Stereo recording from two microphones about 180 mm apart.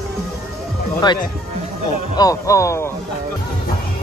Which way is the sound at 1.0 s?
25° left (ahead or behind).